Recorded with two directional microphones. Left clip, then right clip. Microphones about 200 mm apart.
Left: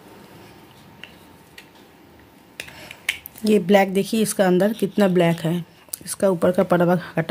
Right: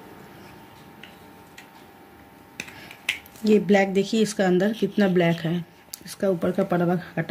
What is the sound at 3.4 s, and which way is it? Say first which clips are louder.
Speech: left 3 dB; 40° left (ahead or behind).